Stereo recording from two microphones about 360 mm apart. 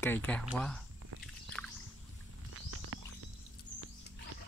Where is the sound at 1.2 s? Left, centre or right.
Centre.